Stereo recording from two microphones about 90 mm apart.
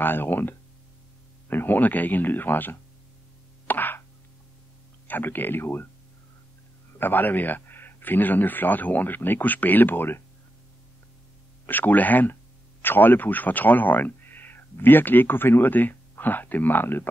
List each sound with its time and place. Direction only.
0.0 s speech: 25° left (ahead or behind)
3.6 s plop: 20° left (ahead or behind)
5.0 s speech: 20° left (ahead or behind)
6.9 s speech: 20° left (ahead or behind)
11.6 s speech: 20° left (ahead or behind)